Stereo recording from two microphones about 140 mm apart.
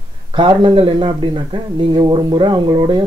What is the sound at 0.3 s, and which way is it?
Speech, 35° right (ahead or behind).